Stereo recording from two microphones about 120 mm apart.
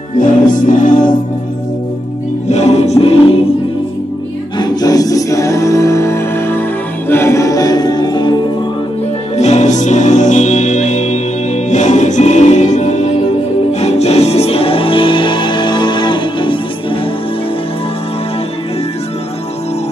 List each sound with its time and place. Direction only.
0.2 s music: 90° left
2.4 s music: 70° left (ahead or behind)
4.6 s music: 35° left (ahead or behind)
9.4 s music: 70° left (ahead or behind); by 17.0 s 45° left (ahead or behind)